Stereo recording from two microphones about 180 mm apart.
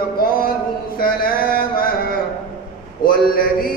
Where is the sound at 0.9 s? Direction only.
55° left (ahead or behind).